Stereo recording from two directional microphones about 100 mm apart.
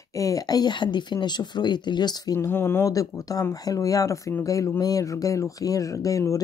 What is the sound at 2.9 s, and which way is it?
Speech, 35° left (ahead or behind).